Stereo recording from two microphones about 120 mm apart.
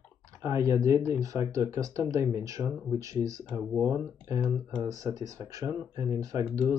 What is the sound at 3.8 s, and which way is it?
Speech, 15° left (ahead or behind).